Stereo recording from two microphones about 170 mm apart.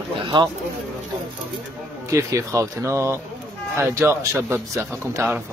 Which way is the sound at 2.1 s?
20° right (ahead or behind).